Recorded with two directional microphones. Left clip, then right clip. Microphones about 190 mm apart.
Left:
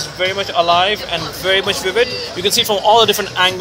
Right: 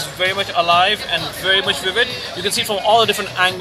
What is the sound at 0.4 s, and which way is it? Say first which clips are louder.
Speech: left 1 dB; 30° left (ahead or behind).